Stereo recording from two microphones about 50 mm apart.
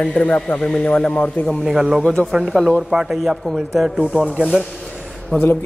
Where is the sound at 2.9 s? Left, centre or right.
Centre.